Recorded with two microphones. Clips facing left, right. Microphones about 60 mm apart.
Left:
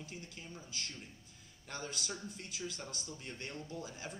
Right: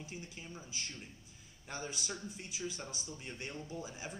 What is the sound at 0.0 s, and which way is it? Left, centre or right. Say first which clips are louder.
Speech: right 1 dB; centre.